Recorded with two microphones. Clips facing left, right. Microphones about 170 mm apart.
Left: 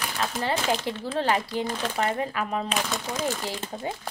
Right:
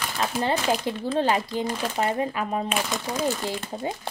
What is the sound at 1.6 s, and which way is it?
Speech, 5° right (ahead or behind).